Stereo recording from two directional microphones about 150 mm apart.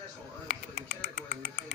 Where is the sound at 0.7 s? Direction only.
85° left.